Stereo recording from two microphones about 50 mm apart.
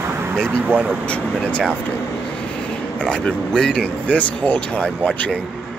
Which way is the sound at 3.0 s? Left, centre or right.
Centre.